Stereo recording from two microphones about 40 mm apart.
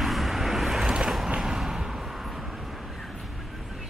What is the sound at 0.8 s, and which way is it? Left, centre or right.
Vehicle, centre.